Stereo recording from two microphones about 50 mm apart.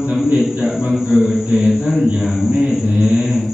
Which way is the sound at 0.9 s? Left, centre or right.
Centre.